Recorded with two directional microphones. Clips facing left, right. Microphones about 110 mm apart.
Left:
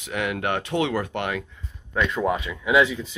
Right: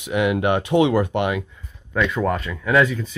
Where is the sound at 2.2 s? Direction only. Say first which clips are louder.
Right 2 dB; 10° left (ahead or behind).